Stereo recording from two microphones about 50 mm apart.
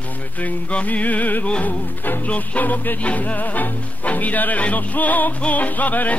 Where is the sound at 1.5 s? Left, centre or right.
Left.